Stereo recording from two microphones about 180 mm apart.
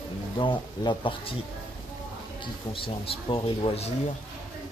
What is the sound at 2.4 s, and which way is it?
A man's voice, 30° left (ahead or behind).